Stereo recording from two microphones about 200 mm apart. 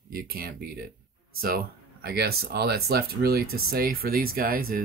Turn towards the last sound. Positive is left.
turn(degrees=-45)  # may be behind; listen again after turning